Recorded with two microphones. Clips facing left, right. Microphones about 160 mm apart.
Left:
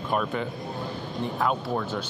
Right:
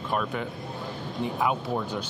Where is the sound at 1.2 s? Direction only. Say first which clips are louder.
Even; 10° right (ahead or behind).